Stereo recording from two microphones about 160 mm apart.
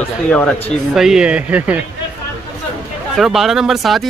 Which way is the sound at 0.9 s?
5° right (ahead or behind).